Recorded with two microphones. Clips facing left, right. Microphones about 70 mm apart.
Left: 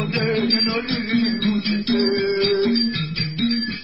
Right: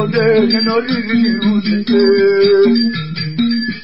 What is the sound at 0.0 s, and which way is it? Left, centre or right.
Music, right.